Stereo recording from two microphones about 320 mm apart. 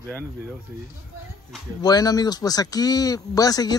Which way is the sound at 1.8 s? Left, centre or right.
Centre.